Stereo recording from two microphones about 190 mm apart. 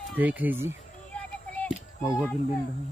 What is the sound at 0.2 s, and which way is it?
Speech, 10° right (ahead or behind).